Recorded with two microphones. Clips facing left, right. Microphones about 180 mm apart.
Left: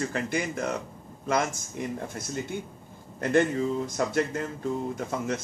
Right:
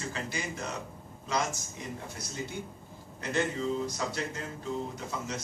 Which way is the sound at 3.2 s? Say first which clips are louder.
Left 7 dB; 50° left (ahead or behind).